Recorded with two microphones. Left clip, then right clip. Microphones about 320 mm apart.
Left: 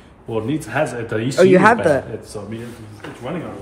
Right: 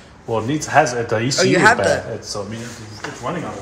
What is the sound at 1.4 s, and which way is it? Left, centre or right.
Speech, left.